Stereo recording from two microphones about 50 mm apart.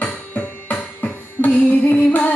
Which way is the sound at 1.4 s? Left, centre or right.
Left.